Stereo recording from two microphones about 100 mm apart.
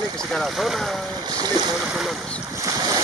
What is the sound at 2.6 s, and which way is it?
Boat, 40° right (ahead or behind).